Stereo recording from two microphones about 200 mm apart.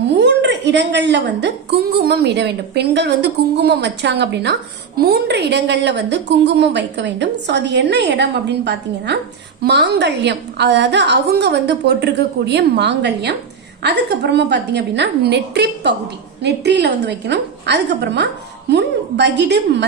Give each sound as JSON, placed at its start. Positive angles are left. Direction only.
{"t": 0.1, "sound": "a woman's voice", "side_deg": -60}